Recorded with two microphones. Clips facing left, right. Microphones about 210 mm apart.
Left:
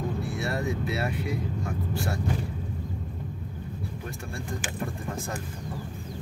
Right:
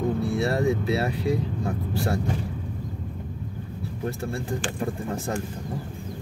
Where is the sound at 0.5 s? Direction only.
30° right (ahead or behind).